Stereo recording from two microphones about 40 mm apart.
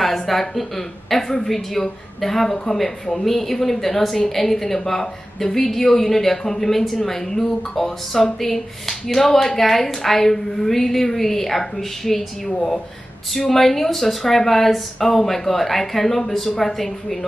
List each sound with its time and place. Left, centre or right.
0.0 s speech: centre